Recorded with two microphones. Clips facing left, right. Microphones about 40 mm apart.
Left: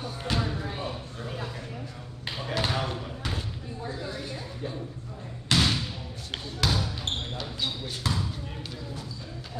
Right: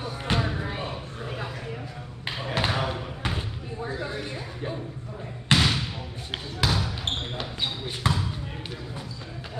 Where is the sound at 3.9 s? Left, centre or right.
Right.